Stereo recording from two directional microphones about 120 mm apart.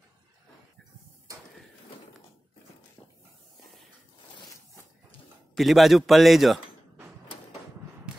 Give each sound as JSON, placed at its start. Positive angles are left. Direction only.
{"t": 4.4, "sound": "zipper", "side_deg": 30}
{"t": 5.6, "sound": "a man's voice", "side_deg": 0}